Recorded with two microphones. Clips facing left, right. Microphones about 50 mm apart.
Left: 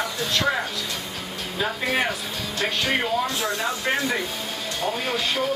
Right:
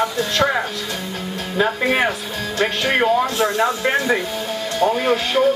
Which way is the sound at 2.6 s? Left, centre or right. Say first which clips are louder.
Right 6 dB; right.